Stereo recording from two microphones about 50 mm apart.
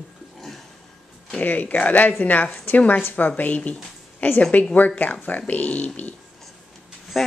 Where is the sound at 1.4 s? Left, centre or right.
Left.